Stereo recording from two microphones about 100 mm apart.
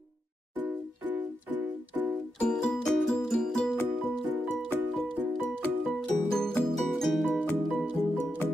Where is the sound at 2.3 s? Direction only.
5° left (ahead or behind).